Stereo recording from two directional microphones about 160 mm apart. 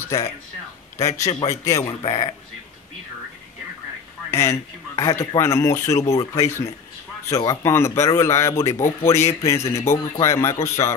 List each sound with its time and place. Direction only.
0.0 s speech: 20° left (ahead or behind)
1.3 s a man's voice: 40° left (ahead or behind)
1.6 s speech: 20° left (ahead or behind)
2.0 s speech: 30° left (ahead or behind)
4.3 s a man's voice: 15° left (ahead or behind)